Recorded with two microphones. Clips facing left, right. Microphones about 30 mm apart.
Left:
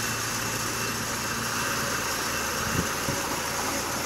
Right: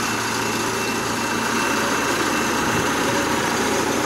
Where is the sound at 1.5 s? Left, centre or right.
Right.